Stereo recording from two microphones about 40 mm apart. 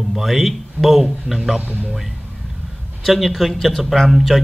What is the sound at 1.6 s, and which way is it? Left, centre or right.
Speech, right.